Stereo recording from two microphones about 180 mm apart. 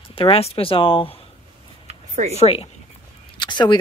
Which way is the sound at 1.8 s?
35° right (ahead or behind).